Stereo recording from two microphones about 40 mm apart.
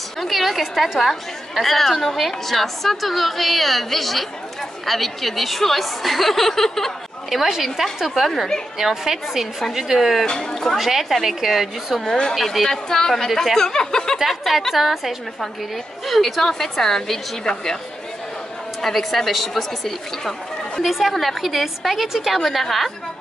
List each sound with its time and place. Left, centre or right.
0.2 s a woman's voice: centre
7.2 s a woman's voice: centre
8.7 s a woman's voice: centre
12.6 s a woman's voice: centre
13.3 s a woman's voice: centre
13.6 s a woman's voice: centre
14.1 s a woman's voice: centre
18.8 s a woman's voice: centre